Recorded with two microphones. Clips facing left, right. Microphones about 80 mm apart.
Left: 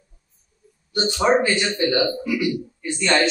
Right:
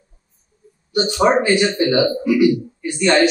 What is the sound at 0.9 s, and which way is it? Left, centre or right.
A man's voice, right.